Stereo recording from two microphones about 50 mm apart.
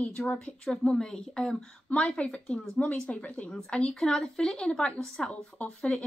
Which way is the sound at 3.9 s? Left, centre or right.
Centre.